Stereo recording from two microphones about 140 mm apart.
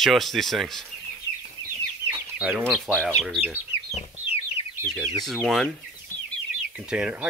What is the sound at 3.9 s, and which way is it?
Chicken, 50° left (ahead or behind).